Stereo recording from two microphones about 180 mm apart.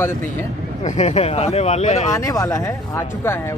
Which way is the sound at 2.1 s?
20° left (ahead or behind).